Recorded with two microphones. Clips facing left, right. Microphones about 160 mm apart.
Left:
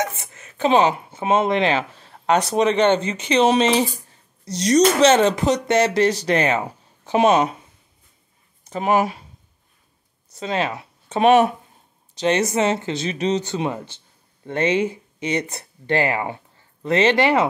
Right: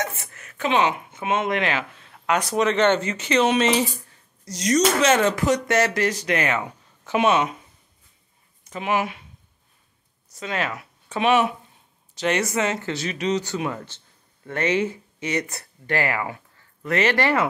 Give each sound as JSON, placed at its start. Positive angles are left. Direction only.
{"t": 0.0, "sound": "speech", "side_deg": 20}
{"t": 8.6, "sound": "speech", "side_deg": 40}
{"t": 10.3, "sound": "speech", "side_deg": 30}
{"t": 11.1, "sound": "speech", "side_deg": 40}
{"t": 12.2, "sound": "speech", "side_deg": 20}
{"t": 13.7, "sound": "speech", "side_deg": 15}